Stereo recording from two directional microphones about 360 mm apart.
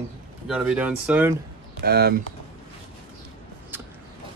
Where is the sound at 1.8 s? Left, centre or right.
Right.